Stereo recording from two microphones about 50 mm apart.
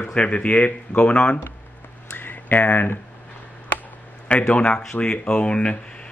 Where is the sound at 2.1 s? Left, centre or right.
Left.